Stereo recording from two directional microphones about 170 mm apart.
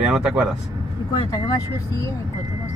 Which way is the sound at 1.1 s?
20° left (ahead or behind).